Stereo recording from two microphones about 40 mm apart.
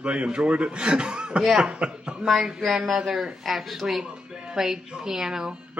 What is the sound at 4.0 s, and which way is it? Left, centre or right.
A woman's voice, centre.